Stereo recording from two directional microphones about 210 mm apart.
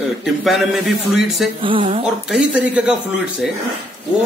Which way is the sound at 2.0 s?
Centre (ahead or behind).